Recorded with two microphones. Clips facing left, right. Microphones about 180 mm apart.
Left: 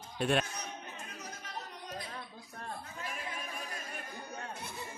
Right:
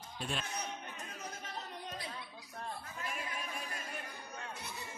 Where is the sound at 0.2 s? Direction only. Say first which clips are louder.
Left 10 dB; 60° left (ahead or behind).